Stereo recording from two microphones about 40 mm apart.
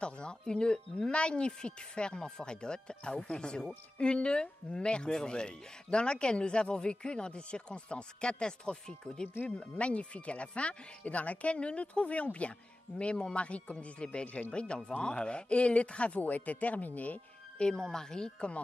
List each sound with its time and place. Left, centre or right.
0.0 s a woman's voice: left
9.6 s a woman's voice: left
17.6 s speech: left